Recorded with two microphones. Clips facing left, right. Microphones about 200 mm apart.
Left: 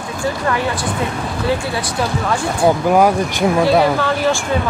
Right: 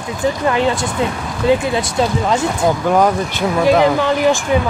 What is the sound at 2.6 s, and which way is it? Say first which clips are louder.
Speech: left 4 dB; 10° left (ahead or behind).